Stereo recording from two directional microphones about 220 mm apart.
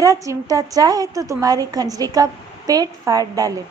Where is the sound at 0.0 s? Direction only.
15° right (ahead or behind).